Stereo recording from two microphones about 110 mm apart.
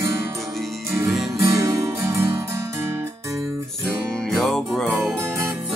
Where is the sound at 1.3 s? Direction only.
30° right (ahead or behind).